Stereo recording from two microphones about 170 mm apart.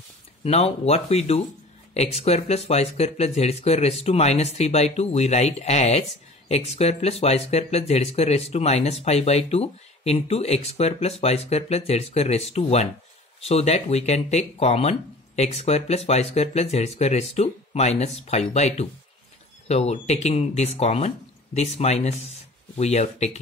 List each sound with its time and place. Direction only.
0.4 s speech: 35° left (ahead or behind)